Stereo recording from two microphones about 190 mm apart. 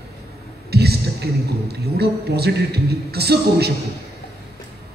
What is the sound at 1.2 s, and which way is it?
A man's voice, 55° right (ahead or behind).